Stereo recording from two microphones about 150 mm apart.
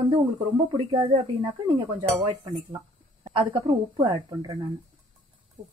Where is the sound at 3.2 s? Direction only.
30° right (ahead or behind).